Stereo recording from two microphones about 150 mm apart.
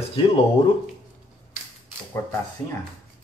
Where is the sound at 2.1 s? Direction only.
20° left (ahead or behind).